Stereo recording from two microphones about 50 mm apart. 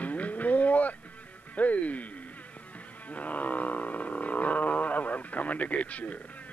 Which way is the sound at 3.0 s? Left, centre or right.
Left.